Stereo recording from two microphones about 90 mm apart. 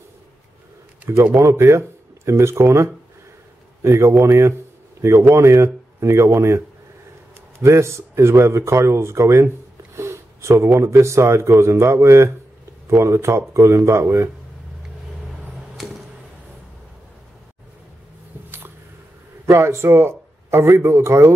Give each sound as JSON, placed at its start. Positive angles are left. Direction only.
{"t": 1.0, "sound": "a sound", "side_deg": -15}
{"t": 1.4, "sound": "speech", "side_deg": -35}
{"t": 19.4, "sound": "a man's voice", "side_deg": -30}